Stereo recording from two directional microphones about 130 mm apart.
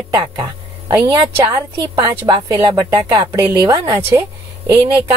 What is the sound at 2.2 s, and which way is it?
A woman's voice, 35° right (ahead or behind).